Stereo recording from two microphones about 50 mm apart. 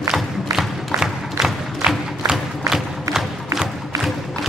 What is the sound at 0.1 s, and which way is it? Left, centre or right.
Music, centre.